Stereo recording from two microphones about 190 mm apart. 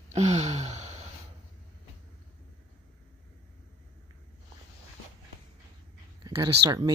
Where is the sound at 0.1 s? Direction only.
40° right (ahead or behind).